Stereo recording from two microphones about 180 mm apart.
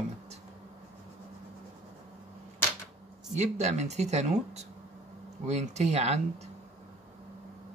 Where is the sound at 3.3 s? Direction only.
40° right (ahead or behind).